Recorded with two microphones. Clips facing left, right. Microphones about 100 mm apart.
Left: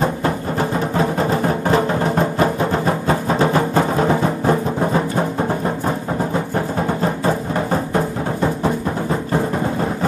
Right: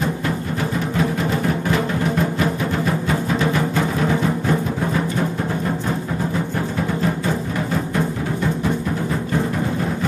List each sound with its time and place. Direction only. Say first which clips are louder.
0.0 s music: left 3 dB; 35° left (ahead or behind)
7.0 s music: left 3 dB; 35° left (ahead or behind)